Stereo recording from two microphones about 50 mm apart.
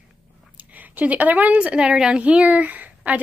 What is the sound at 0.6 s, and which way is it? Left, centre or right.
Speech, right.